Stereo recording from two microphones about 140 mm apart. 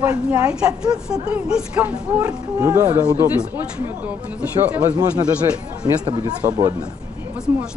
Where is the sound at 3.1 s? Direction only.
10° right (ahead or behind).